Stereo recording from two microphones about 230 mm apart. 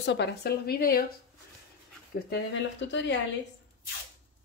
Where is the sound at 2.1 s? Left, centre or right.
Left.